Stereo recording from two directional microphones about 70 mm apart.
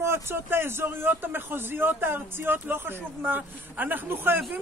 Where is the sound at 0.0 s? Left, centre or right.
Right.